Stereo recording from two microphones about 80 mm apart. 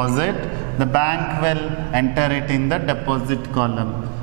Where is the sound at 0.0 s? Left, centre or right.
Centre.